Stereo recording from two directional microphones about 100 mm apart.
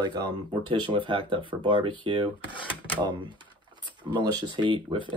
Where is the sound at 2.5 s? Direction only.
55° left (ahead or behind).